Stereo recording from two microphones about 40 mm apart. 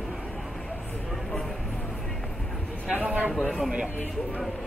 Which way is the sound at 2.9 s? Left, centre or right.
Right.